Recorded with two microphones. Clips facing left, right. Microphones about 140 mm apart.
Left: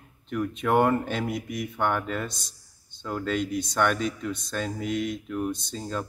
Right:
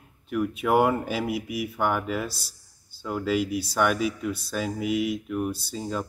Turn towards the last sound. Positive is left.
turn(degrees=-5)  # may be behind; listen again after turning